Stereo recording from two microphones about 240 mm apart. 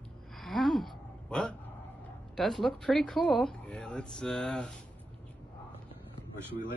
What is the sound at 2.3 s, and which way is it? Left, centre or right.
Speech, centre.